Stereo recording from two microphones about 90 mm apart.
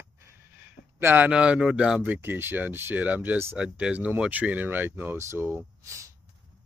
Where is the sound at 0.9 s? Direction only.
25° right (ahead or behind).